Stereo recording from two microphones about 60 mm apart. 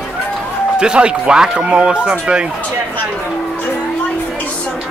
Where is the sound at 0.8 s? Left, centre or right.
Centre.